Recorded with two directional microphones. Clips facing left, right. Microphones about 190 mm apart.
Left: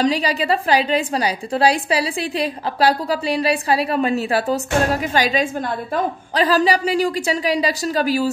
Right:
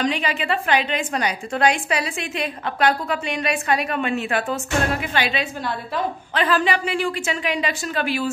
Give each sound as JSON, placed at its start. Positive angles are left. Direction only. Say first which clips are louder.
{"t": 0.0, "sound": "a woman's voice", "louder": "left 4 dB", "side_deg": 35}